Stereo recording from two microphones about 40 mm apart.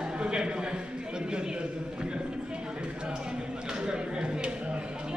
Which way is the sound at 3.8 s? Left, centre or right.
Right.